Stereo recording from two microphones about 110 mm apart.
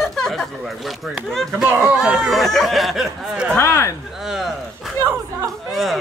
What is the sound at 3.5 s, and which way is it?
Speech, 25° left (ahead or behind).